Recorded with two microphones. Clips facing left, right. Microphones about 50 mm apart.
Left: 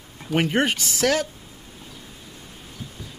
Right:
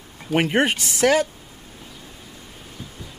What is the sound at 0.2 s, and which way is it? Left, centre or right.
Speech, centre.